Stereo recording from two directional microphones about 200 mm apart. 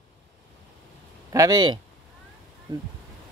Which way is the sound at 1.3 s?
20° right (ahead or behind).